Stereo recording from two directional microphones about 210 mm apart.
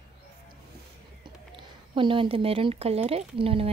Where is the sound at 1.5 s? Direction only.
25° right (ahead or behind).